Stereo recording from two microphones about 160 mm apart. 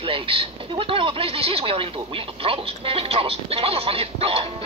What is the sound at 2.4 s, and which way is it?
Speech, 35° right (ahead or behind).